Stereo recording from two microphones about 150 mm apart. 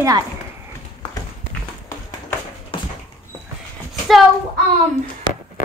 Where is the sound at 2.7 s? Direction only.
35° left (ahead or behind).